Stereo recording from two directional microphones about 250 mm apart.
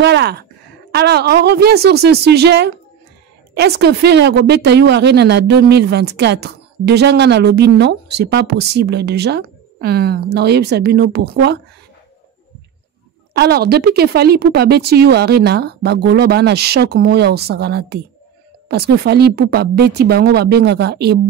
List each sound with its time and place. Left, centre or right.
0.0 s a woman's voice: right
13.3 s a woman's voice: right